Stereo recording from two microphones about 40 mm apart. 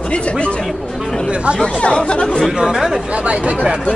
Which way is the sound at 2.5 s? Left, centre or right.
Centre.